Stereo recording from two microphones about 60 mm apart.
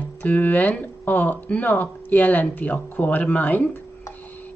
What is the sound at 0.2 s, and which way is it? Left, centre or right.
Speech, left.